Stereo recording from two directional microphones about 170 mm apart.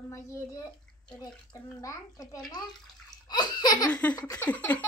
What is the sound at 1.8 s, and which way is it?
Laughter, 20° left (ahead or behind).